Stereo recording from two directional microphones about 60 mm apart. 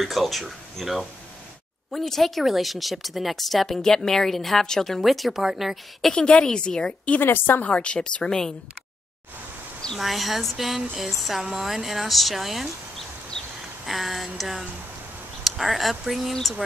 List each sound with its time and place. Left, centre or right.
0.0 s speech: centre
6.1 s a woman's voice: centre
7.2 s a woman's voice: left
7.7 s a woman's voice: centre
9.9 s speech: centre
13.4 s a sound: centre
13.8 s speech: centre